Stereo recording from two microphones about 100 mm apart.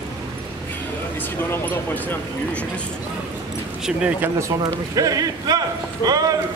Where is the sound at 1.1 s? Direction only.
20° left (ahead or behind).